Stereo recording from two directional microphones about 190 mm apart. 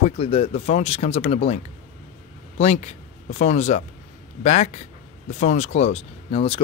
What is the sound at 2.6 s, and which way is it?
Speech, 35° left (ahead or behind).